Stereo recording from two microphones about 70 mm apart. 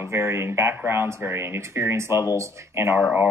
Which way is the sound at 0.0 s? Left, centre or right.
Right.